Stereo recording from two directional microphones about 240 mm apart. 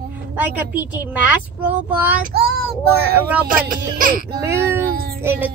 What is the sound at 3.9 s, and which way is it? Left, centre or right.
Speech, right.